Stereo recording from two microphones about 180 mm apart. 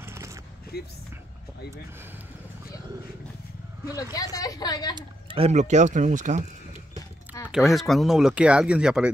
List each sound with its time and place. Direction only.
0.0 s a sound: 15° right (ahead or behind)
3.9 s speech: 20° left (ahead or behind)
4.9 s speech: 30° right (ahead or behind)
7.4 s speech: centre (ahead or behind)